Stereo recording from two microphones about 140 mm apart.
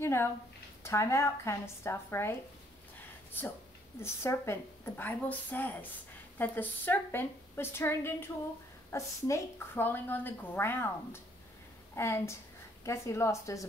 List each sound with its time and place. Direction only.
0.0 s a woman's voice: 15° left (ahead or behind)
4.0 s a woman's voice: 20° left (ahead or behind)